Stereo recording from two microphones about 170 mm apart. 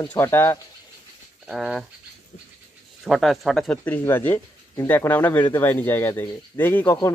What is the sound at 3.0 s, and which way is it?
Speech, centre (ahead or behind).